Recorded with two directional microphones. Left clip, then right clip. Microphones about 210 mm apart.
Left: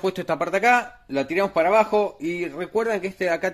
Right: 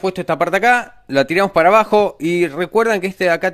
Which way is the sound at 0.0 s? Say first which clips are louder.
Right 6 dB; 30° right (ahead or behind).